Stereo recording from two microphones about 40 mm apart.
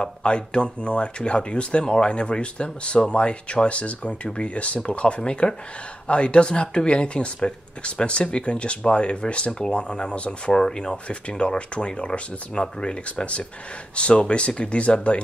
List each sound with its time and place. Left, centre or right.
0.0 s speech: left